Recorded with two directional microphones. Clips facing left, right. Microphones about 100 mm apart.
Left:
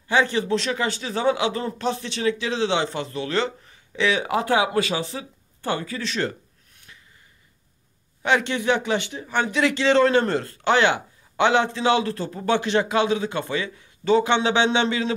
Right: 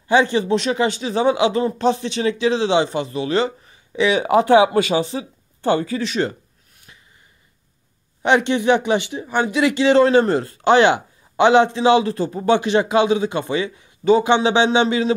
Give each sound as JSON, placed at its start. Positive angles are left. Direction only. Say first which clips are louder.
{"t": 0.1, "sound": "speech", "louder": "right 5 dB", "side_deg": -20}
{"t": 4.4, "sound": "speech", "louder": "right 10 dB", "side_deg": -25}
{"t": 8.2, "sound": "speech", "louder": "right 5 dB", "side_deg": -20}